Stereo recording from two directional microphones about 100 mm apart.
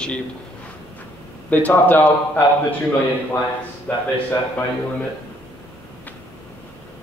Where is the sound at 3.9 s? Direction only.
20° left (ahead or behind).